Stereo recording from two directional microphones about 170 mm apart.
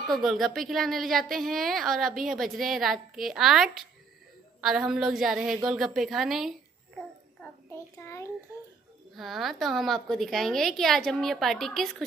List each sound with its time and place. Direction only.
0.1 s a woman's voice: centre (ahead or behind)
7.4 s child singing: 15° left (ahead or behind)
9.1 s a woman's voice: centre (ahead or behind)